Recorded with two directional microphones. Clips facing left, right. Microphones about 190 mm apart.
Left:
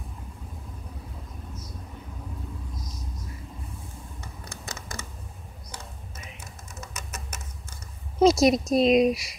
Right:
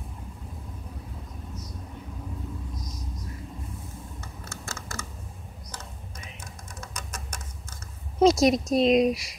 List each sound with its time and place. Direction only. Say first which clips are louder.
4.2 s computer keyboard: right 1 dB; 20° left (ahead or behind)
5.7 s a sound: left 1 dB; 10° left (ahead or behind)
8.2 s a woman's voice: left 1 dB; 5° left (ahead or behind)